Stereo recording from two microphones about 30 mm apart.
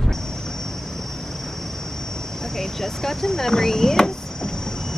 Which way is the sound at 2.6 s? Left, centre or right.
Centre.